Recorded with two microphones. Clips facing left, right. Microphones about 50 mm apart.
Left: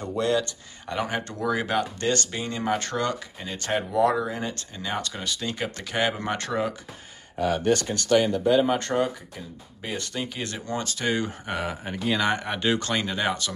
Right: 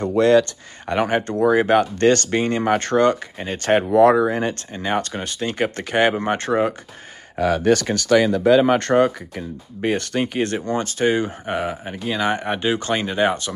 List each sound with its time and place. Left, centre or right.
0.0 s speech: right
1.8 s speech: right
7.7 s speech: right; by 12.3 s centre
12.3 s speech: right